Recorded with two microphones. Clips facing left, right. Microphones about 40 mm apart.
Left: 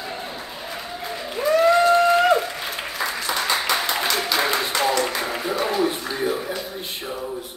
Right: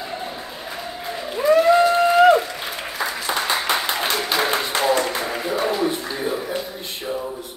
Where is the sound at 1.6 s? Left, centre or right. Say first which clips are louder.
Left 1 dB; centre.